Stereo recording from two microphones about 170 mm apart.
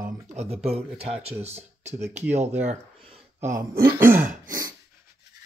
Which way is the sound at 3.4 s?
15° right (ahead or behind).